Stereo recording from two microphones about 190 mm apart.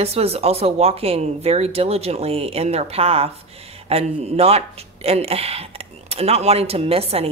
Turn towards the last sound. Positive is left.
turn(degrees=-30)  # may be behind; listen again after turning